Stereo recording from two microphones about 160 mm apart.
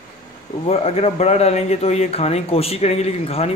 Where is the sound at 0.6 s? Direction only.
40° left (ahead or behind).